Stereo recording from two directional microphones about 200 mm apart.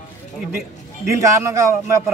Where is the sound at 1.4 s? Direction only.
15° right (ahead or behind).